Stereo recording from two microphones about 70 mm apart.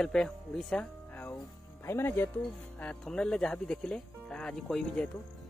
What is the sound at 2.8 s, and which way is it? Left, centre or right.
Speech, centre.